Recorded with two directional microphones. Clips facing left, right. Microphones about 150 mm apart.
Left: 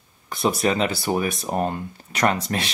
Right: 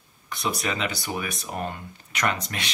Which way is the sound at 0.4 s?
35° left (ahead or behind).